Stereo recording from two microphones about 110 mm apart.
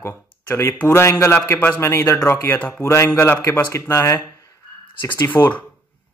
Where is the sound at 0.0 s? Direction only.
20° left (ahead or behind).